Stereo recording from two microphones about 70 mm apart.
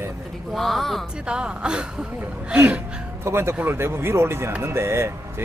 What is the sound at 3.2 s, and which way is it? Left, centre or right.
Speech, right.